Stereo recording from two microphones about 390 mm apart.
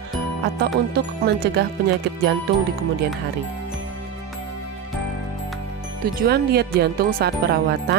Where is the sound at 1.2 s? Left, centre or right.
Right.